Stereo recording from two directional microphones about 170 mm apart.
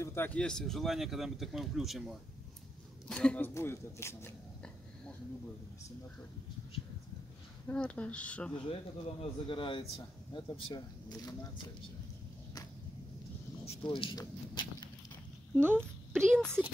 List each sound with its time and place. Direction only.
0.0 s speech: 15° left (ahead or behind)
7.6 s speech: 10° left (ahead or behind)
8.5 s speech: 30° left (ahead or behind)
13.7 s speech: 30° left (ahead or behind)
16.1 s speech: 5° left (ahead or behind)